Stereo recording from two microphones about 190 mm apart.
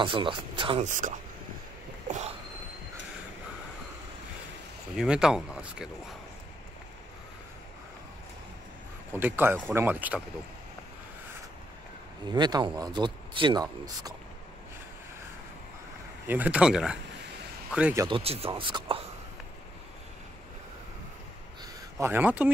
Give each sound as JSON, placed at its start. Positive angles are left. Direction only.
{"t": 0.0, "sound": "speech", "side_deg": -25}
{"t": 0.8, "sound": "speech", "side_deg": -45}
{"t": 2.0, "sound": "a sound", "side_deg": -35}
{"t": 4.9, "sound": "speech", "side_deg": -5}
{"t": 9.1, "sound": "speech", "side_deg": -10}
{"t": 12.3, "sound": "speech", "side_deg": -20}
{"t": 16.3, "sound": "speech", "side_deg": -10}
{"t": 18.0, "sound": "speech", "side_deg": -30}
{"t": 21.9, "sound": "speech", "side_deg": -10}